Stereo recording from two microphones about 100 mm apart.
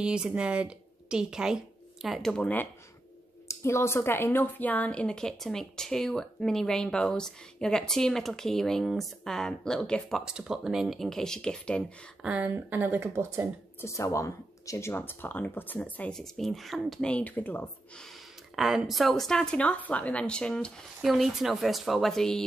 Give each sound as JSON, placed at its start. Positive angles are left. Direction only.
{"t": 0.0, "sound": "a woman's voice", "side_deg": -10}
{"t": 2.3, "sound": "speech", "side_deg": 15}
{"t": 3.4, "sound": "a woman's voice", "side_deg": 25}
{"t": 10.2, "sound": "a woman's voice", "side_deg": -5}
{"t": 12.2, "sound": "speech", "side_deg": -10}
{"t": 13.7, "sound": "speech", "side_deg": 30}
{"t": 17.1, "sound": "speech", "side_deg": 15}
{"t": 18.9, "sound": "speech", "side_deg": 0}
{"t": 21.0, "sound": "a woman's voice", "side_deg": 0}